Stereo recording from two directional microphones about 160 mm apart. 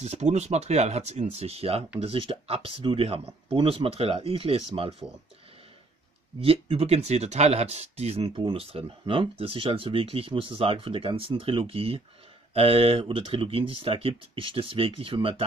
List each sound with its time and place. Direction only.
0.0 s speech: 45° right (ahead or behind)
6.4 s speech: 35° right (ahead or behind)